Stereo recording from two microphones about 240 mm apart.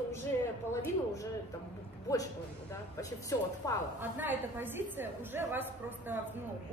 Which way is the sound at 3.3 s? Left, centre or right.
Centre.